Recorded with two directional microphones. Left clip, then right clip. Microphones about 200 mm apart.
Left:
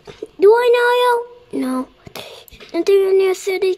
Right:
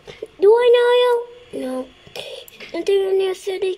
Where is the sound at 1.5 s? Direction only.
30° left (ahead or behind).